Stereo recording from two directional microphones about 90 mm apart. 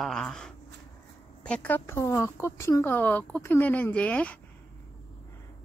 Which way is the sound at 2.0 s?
30° left (ahead or behind).